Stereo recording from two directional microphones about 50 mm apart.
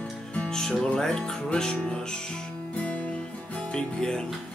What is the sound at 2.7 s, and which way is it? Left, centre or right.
Guitar, left.